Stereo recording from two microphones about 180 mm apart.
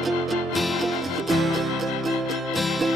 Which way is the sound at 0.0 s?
Centre (ahead or behind).